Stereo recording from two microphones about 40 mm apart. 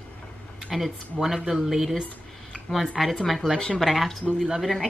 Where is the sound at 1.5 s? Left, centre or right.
Centre.